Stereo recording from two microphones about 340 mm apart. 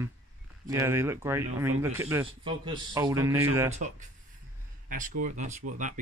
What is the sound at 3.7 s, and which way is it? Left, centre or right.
Speech, right.